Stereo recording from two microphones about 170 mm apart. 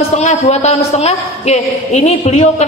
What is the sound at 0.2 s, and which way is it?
A woman's voice, 40° left (ahead or behind).